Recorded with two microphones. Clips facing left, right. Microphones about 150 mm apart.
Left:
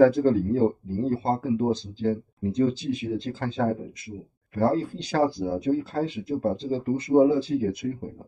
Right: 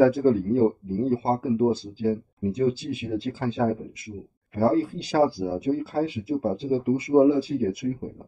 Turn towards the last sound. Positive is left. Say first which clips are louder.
# right 1 dB
turn(degrees=-5)  # may be behind; listen again after turning